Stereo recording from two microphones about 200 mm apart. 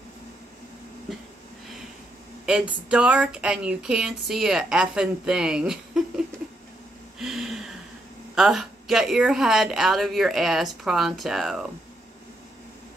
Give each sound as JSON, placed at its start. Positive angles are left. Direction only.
{"t": 1.1, "sound": "speech", "side_deg": 0}
{"t": 2.4, "sound": "speech", "side_deg": -5}
{"t": 7.2, "sound": "a sound", "side_deg": 0}
{"t": 8.4, "sound": "speech", "side_deg": 0}